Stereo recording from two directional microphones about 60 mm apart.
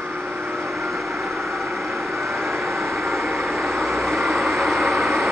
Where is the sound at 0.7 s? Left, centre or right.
Centre.